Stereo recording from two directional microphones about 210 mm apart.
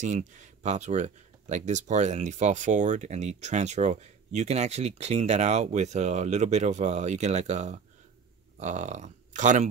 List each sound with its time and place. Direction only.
0.0 s speech: 35° right (ahead or behind)